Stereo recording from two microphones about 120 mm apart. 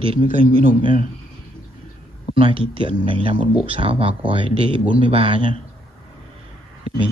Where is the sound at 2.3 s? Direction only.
50° right (ahead or behind).